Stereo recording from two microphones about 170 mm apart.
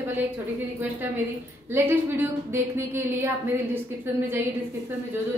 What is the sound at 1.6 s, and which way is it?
Speech, 15° right (ahead or behind).